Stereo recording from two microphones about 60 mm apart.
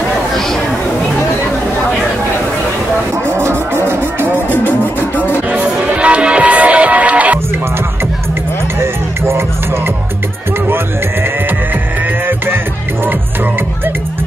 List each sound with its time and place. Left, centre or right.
3.3 s music: right
4.5 s music: left
5.5 s music: right
8.7 s music: right